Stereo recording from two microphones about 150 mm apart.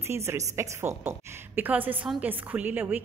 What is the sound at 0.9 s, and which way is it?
Speech, 50° right (ahead or behind).